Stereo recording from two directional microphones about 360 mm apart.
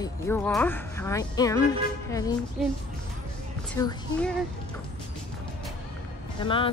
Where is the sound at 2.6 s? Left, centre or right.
Centre.